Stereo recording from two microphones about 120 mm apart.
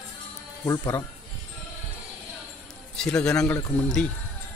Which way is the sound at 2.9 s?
5° left (ahead or behind).